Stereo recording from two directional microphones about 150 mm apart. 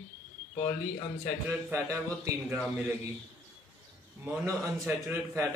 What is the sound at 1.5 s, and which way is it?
Speech, 20° right (ahead or behind).